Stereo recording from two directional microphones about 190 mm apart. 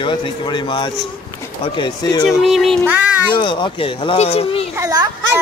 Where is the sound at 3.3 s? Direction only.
25° left (ahead or behind).